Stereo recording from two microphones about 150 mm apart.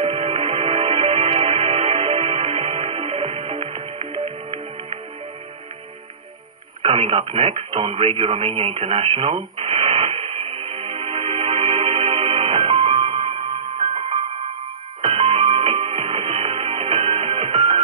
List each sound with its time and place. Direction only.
0.0 s music: 40° right (ahead or behind)
6.8 s radio: 45° right (ahead or behind)
15.0 s music: 45° right (ahead or behind)